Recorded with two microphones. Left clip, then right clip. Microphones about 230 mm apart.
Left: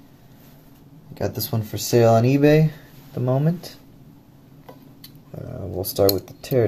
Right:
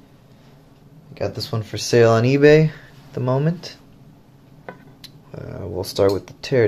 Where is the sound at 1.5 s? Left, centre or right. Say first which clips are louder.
Right 3 dB; centre.